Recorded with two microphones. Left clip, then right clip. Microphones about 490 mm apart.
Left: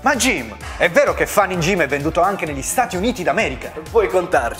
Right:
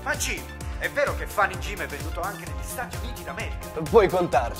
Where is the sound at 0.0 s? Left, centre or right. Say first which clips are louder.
Left 12 dB; left.